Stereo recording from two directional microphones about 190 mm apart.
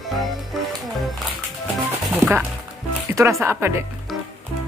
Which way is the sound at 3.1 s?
15° right (ahead or behind).